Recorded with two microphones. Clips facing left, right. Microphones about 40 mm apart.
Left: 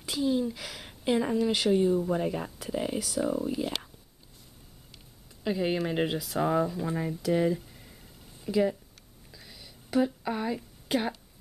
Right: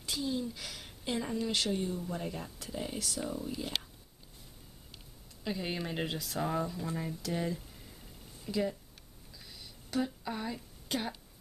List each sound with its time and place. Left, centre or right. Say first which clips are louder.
0.0 s speech: left 7 dB; centre
0.8 s a woman's voice: left 9 dB; centre
1.5 s speech: left 11 dB; centre
3.0 s speech: left 8 dB; centre
3.3 s speech: left 8 dB; left
5.4 s speech: left 8 dB; centre
6.4 s speech: left 7 dB; centre
9.3 s a sound: left 2 dB; centre